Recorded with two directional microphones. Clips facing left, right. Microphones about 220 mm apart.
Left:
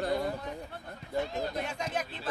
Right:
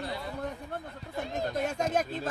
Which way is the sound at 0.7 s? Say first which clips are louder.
Left 3 dB; 50° right (ahead or behind).